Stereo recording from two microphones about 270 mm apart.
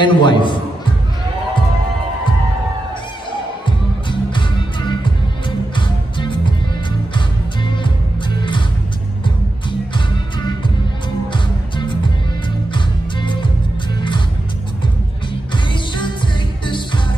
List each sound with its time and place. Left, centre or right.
0.0 s a man's voice: centre
3.6 s music: centre
9.7 s music: centre
15.5 s music: centre